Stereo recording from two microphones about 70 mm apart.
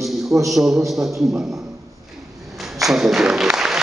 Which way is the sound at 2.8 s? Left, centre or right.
Centre.